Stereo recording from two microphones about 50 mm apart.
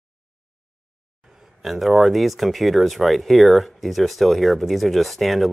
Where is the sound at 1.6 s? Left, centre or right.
Centre.